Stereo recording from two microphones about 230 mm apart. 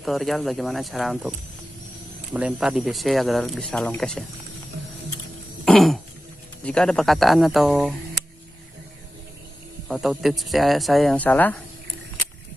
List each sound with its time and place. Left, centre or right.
0.0 s speech: centre
2.3 s speech: centre
5.7 s throat clearing: centre
6.6 s speech: centre
9.8 s speech: centre